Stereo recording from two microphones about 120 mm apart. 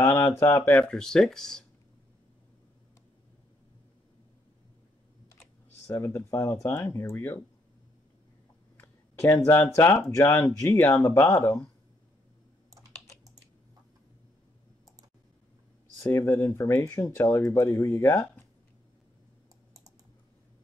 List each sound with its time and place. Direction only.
0.0 s a sound: 20° left (ahead or behind)
0.6 s speech: 10° left (ahead or behind)
5.9 s speech: 20° left (ahead or behind)
8.7 s speech: 20° left (ahead or behind)
16.0 s speech: 20° left (ahead or behind)